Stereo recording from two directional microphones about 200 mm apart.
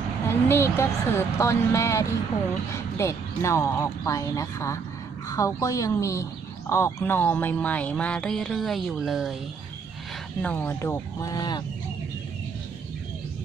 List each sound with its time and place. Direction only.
0.3 s speech: 10° left (ahead or behind)
10.4 s speech: 5° left (ahead or behind)